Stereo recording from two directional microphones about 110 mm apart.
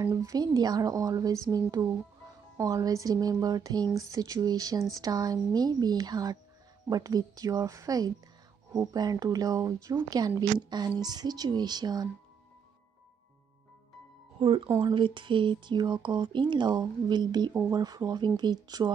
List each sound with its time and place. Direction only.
0.0 s speech: 35° right (ahead or behind)
2.5 s speech: 30° right (ahead or behind)
14.4 s speech: 55° right (ahead or behind); by 18.9 s 40° right (ahead or behind)